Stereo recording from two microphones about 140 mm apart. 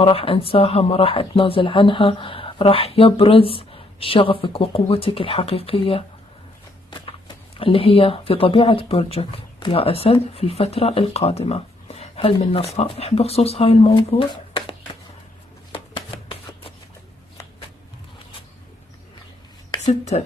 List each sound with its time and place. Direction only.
0.0 s speech: 40° left (ahead or behind)
15.7 s shuffling cards: 40° left (ahead or behind)
19.8 s speech: 55° left (ahead or behind)